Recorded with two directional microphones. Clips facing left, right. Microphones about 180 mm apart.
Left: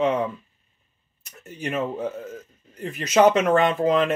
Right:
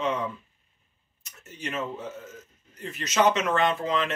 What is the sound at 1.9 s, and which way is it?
Speech, 55° left (ahead or behind).